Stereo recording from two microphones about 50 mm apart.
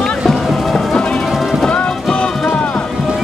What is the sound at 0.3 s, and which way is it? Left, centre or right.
Music, centre.